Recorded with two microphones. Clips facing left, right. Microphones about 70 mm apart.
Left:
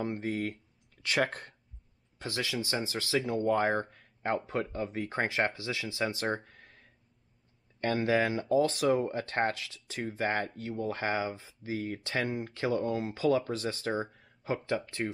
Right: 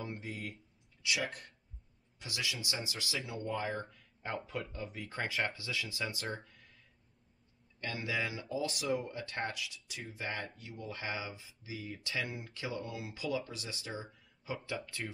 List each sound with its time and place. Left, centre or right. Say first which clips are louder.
0.0 s speech: left 9 dB; left
3.3 s speech: left 10 dB; left
6.2 s a sound: left 8 dB; left
7.8 s speech: left 10 dB; left